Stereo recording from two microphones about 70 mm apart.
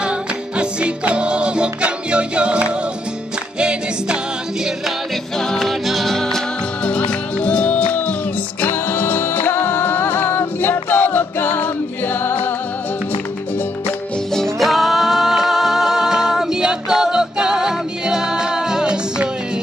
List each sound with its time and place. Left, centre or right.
0.0 s music: centre
5.4 s music: centre; by 12.5 s left
14.3 s music: centre